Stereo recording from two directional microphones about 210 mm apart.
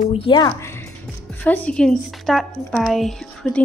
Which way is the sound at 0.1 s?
25° left (ahead or behind).